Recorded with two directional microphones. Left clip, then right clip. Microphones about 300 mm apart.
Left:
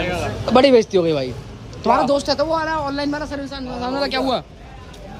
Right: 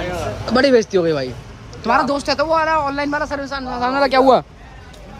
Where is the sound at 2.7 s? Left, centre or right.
Centre.